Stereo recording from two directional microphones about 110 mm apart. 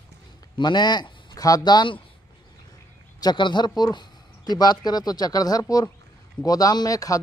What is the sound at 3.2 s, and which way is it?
Speech, 45° left (ahead or behind).